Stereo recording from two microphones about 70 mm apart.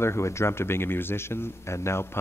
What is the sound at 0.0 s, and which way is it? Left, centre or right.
Speech, left.